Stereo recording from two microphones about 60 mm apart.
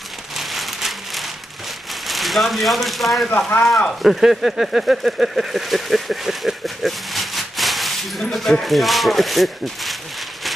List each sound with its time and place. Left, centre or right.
0.4 s rain on surface: centre
2.0 s speech: centre
3.3 s speech: left
4.0 s speech: centre